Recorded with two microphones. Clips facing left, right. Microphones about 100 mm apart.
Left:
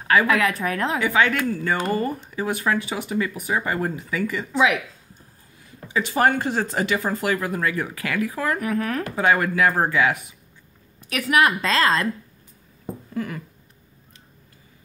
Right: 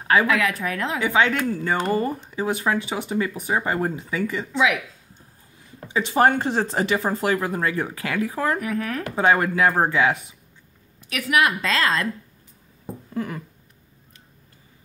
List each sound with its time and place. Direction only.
0.3 s a woman's voice: 40° left (ahead or behind)
1.0 s speech: 25° right (ahead or behind)
5.9 s speech: 25° right (ahead or behind)
8.5 s a woman's voice: 40° left (ahead or behind)
9.1 s speech: 25° right (ahead or behind)
11.1 s a woman's voice: 35° left (ahead or behind)
13.1 s a sound: 25° right (ahead or behind)